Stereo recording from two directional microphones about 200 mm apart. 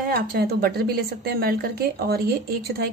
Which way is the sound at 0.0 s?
50° right (ahead or behind).